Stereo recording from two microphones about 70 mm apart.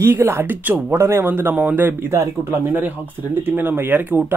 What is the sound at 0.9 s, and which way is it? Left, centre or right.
Speech, right.